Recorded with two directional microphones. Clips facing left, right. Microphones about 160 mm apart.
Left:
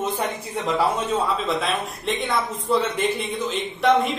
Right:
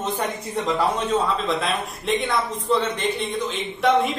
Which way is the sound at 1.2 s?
Centre (ahead or behind).